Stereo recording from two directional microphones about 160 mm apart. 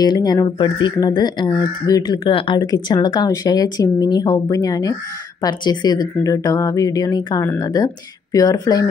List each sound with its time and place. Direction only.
0.0 s speech: 25° left (ahead or behind)